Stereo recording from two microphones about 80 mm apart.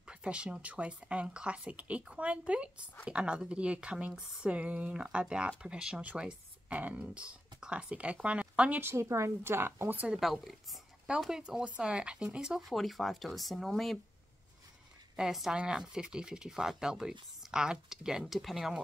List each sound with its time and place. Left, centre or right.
0.0 s speech: centre
8.8 s a woman's voice: right
10.0 s speech: centre
15.1 s speech: centre